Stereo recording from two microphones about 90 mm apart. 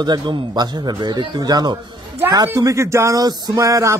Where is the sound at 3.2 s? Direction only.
45° right (ahead or behind).